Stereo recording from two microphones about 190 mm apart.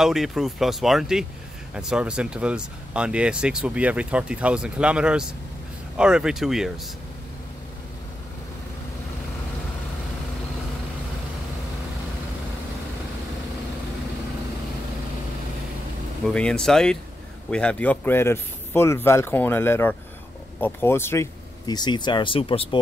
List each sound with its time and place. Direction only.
0.0 s speech: centre (ahead or behind)
16.3 s speech: 5° left (ahead or behind); by 22.8 s 30° left (ahead or behind)